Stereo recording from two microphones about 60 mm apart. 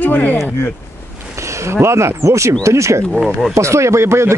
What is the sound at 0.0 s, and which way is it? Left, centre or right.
Speech, left.